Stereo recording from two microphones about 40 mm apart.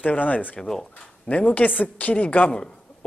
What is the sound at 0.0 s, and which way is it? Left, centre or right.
Speech, left.